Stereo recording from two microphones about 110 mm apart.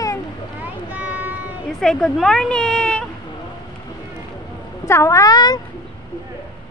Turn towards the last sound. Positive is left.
turn(degrees=40)  # may be behind; listen again after turning